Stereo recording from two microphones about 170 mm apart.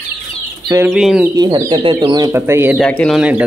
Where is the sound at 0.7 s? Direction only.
15° right (ahead or behind).